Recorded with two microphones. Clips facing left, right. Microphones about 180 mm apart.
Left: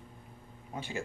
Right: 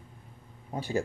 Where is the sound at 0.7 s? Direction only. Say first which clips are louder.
Right 6 dB; 35° right (ahead or behind).